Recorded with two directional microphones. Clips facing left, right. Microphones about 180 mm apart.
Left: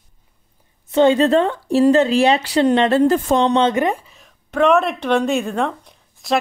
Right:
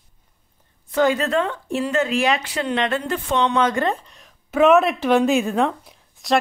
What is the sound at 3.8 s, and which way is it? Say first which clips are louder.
A woman's voice: left 3 dB; 10° left (ahead or behind).